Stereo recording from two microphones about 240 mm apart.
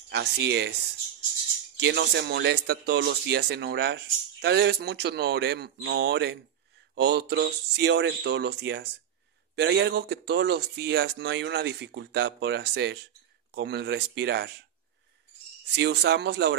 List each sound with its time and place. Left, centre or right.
0.1 s speech: right
1.8 s speech: right
15.7 s speech: right